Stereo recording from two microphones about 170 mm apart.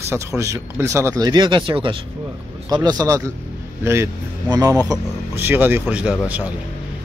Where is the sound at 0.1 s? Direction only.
15° right (ahead or behind).